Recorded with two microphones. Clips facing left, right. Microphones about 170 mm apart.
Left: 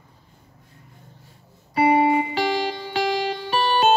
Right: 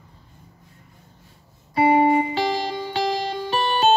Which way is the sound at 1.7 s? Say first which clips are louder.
Right 1 dB; 35° right (ahead or behind).